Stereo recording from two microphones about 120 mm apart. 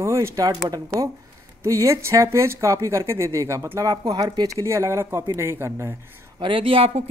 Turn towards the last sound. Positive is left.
turn(degrees=-55)  # may be behind; listen again after turning